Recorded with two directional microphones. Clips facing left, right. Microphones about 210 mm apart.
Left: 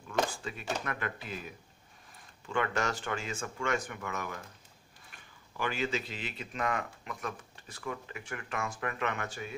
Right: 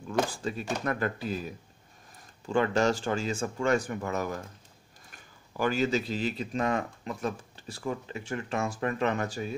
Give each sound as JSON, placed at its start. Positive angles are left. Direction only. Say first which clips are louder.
{"t": 0.3, "sound": "speech", "louder": "right 5 dB", "side_deg": -35}